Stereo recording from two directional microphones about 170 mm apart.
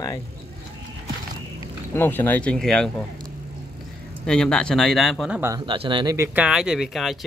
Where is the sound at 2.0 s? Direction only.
10° left (ahead or behind).